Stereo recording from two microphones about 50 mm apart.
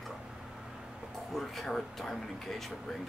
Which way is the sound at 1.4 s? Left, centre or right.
Centre.